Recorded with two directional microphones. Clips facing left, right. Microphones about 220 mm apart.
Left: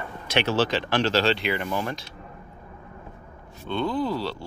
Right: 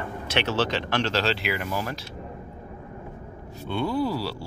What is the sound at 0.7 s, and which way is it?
Speech, 30° left (ahead or behind).